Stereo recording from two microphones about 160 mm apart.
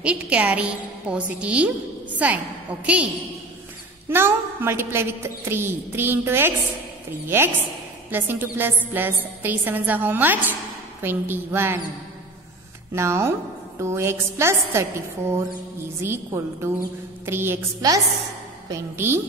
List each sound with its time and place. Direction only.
0.0 s a woman's voice: 10° right (ahead or behind)
4.1 s a woman's voice: 15° right (ahead or behind)
12.9 s a woman's voice: 15° right (ahead or behind)